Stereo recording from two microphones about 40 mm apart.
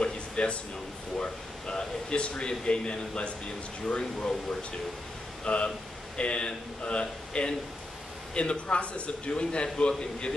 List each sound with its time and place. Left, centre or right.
0.0 s a sound: left
1.1 s speech: left
5.4 s speech: left